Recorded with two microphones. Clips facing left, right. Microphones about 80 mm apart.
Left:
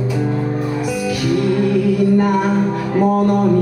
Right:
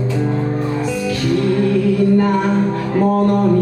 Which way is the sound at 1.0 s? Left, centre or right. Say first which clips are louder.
Even; centre.